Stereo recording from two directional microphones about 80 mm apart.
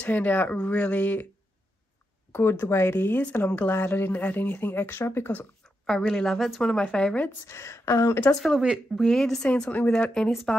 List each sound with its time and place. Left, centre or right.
0.0 s speech: left
2.3 s speech: left
4.8 s a woman's voice: left
5.9 s a woman's voice: centre
7.4 s a woman's voice: left
8.2 s a woman's voice: centre
9.5 s a woman's voice: centre